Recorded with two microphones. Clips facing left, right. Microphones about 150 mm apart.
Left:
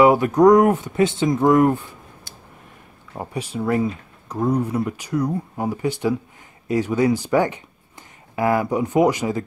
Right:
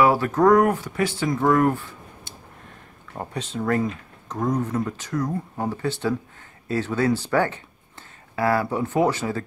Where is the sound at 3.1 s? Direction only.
10° left (ahead or behind).